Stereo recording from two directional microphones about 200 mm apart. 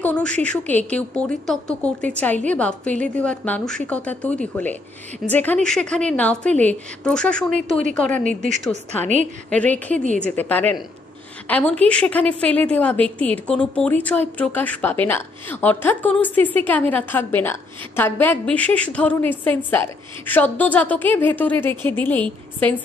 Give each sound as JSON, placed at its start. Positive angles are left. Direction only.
{"t": 0.0, "sound": "a woman's voice", "side_deg": 5}
{"t": 8.1, "sound": "a woman's voice", "side_deg": -40}
{"t": 8.6, "sound": "a woman's voice", "side_deg": 10}